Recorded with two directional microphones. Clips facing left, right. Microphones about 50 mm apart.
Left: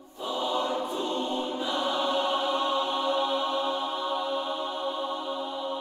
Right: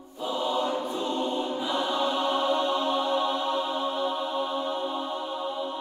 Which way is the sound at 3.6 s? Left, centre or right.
Centre.